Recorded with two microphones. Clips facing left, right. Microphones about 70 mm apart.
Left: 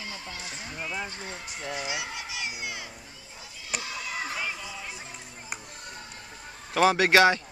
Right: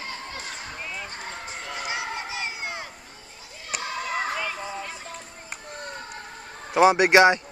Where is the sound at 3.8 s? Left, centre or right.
Right.